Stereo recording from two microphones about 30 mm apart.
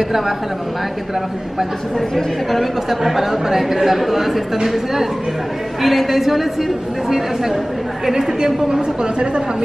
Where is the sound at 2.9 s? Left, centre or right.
Centre.